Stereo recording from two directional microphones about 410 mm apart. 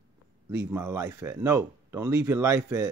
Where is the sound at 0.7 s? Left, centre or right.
Centre.